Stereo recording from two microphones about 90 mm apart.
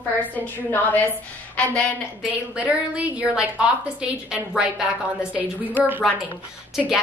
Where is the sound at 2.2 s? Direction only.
15° right (ahead or behind).